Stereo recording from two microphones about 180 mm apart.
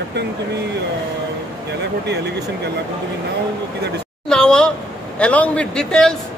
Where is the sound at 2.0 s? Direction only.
70° right (ahead or behind).